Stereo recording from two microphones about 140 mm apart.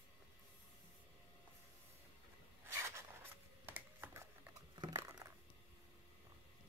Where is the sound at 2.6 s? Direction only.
20° right (ahead or behind).